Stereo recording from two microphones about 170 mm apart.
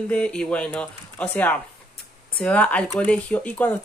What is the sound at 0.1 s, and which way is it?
Speech, 5° left (ahead or behind).